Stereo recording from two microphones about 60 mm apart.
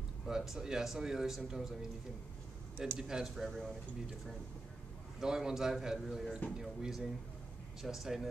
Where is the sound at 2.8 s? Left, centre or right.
Centre.